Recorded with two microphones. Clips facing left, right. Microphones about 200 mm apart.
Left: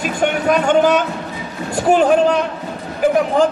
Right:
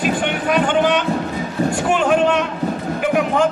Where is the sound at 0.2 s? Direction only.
45° left (ahead or behind).